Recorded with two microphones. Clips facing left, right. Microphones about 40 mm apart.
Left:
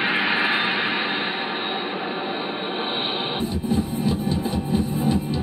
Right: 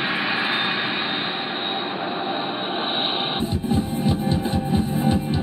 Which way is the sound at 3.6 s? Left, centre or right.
Right.